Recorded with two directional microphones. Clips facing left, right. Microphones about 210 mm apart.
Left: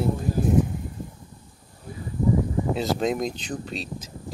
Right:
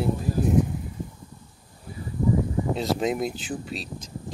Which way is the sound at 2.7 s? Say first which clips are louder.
Even; centre (ahead or behind).